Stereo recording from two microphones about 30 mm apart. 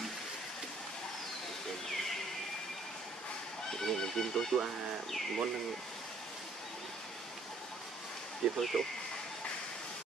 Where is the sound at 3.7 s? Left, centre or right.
Centre.